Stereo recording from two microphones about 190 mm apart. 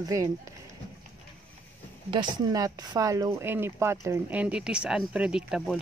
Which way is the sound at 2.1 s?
20° right (ahead or behind).